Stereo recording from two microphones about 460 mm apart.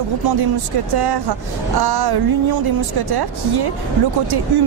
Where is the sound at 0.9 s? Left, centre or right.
Right.